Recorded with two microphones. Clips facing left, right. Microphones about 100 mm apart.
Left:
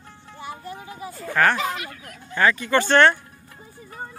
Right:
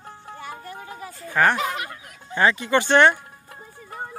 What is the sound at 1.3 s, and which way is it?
Speech, 15° right (ahead or behind).